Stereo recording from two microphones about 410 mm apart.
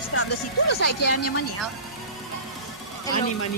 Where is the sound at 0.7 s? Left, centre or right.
Left.